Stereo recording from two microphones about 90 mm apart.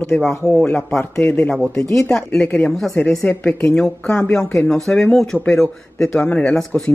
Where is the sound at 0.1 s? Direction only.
15° left (ahead or behind).